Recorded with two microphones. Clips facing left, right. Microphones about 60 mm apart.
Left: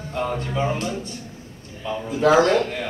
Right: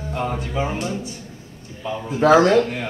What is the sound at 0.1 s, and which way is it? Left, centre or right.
Speech, centre.